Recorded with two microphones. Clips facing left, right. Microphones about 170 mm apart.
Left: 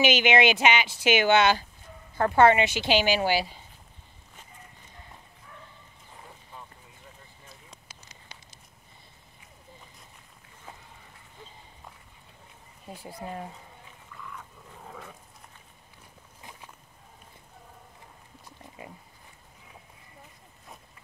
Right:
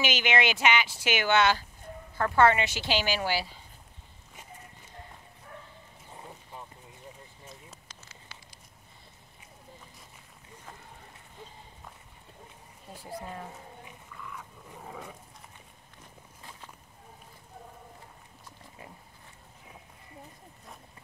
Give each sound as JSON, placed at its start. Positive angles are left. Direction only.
{"t": 0.0, "sound": "speech", "side_deg": 20}
{"t": 7.9, "sound": "a sound", "side_deg": 15}
{"t": 14.9, "sound": "dog", "side_deg": -10}